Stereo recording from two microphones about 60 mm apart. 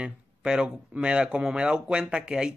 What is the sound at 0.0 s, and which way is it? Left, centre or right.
A man's voice, centre.